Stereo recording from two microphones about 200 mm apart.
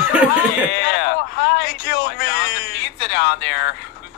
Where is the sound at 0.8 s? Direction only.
55° left (ahead or behind).